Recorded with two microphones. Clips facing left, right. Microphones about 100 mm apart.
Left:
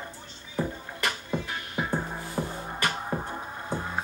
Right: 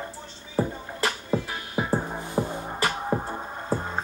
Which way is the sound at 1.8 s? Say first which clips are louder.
Right 4 dB; 20° right (ahead or behind).